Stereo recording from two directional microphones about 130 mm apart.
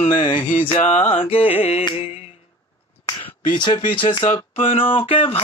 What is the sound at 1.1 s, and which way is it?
Mantra, 45° left (ahead or behind).